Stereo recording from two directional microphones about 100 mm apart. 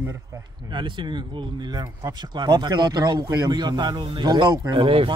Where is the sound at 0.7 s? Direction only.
55° right (ahead or behind).